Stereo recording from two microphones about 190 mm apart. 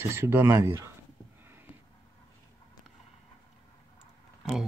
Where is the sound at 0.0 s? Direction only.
15° right (ahead or behind).